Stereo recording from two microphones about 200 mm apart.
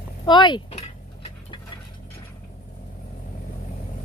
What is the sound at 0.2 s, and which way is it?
Speech, 25° left (ahead or behind).